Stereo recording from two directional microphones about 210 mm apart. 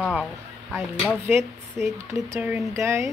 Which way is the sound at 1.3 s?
15° right (ahead or behind).